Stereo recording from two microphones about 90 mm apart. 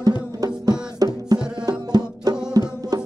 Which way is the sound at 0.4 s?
40° right (ahead or behind).